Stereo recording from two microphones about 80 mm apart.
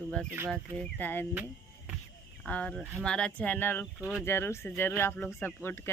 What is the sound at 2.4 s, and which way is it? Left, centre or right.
Speech, centre.